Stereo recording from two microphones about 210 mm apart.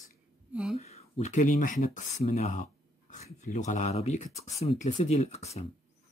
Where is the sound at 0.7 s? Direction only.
30° left (ahead or behind).